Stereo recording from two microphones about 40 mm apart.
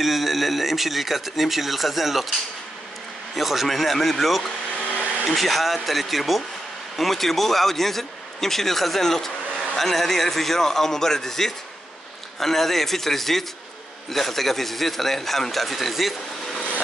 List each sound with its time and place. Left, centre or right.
0.0 s speech: centre
3.3 s speech: centre
4.7 s vacuum cleaner: left
5.2 s a man's voice: centre